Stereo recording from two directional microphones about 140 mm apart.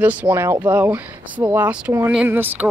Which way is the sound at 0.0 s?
10° right (ahead or behind).